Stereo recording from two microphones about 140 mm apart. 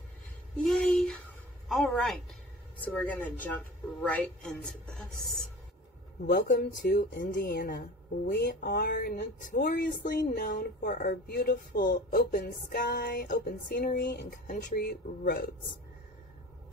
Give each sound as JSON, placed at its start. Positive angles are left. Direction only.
{"t": 0.7, "sound": "a sound", "side_deg": 5}
{"t": 1.7, "sound": "a woman's voice", "side_deg": 0}
{"t": 2.8, "sound": "a woman's voice", "side_deg": 10}
{"t": 6.3, "sound": "music", "side_deg": 70}